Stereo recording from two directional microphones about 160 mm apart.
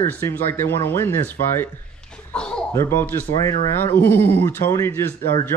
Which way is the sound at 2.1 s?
5° left (ahead or behind).